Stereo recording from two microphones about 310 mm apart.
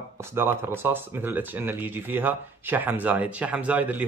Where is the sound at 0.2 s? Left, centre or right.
Centre.